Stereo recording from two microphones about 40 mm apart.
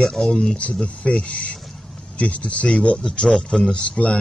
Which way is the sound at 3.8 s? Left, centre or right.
Left.